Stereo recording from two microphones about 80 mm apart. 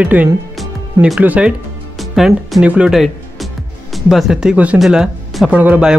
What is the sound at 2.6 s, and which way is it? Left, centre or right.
Speech, centre.